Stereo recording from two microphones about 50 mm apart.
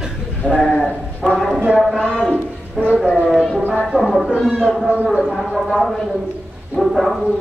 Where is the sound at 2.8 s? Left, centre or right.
Centre.